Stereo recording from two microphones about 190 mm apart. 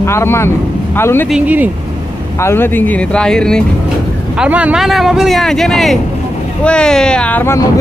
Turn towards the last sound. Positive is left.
turn(degrees=15)  # may be behind; listen again after turning